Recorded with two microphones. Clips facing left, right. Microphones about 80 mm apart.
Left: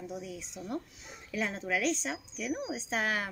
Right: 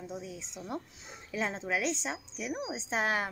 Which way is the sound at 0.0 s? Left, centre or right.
Right.